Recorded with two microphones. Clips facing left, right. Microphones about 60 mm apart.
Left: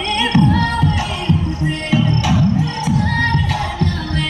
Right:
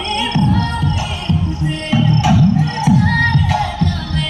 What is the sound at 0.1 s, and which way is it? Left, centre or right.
Music, left.